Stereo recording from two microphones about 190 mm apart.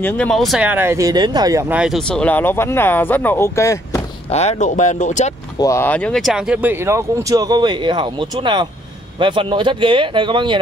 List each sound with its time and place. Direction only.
0.0 s speech: 5° left (ahead or behind)
4.3 s speech: 35° left (ahead or behind)
5.6 s speech: 15° left (ahead or behind); by 10.6 s 25° right (ahead or behind)